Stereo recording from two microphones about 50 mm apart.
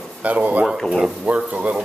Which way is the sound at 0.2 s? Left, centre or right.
Right.